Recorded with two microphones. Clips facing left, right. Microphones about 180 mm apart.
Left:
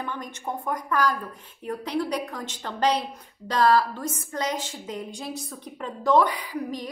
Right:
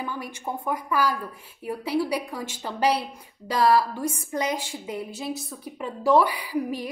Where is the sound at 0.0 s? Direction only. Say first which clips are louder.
Right 1 dB; 5° right (ahead or behind).